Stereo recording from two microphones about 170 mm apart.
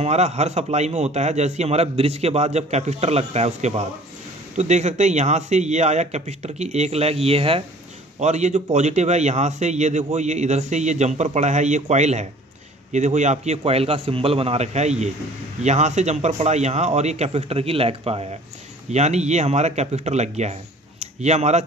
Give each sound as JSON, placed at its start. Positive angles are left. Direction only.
{"t": 0.0, "sound": "a man's voice", "side_deg": -40}